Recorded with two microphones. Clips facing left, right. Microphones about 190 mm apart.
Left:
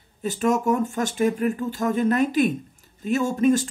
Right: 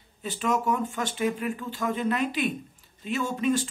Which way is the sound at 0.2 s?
45° left (ahead or behind).